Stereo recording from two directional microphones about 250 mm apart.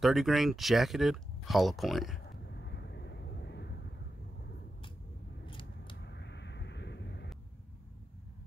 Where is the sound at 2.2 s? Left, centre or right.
Left.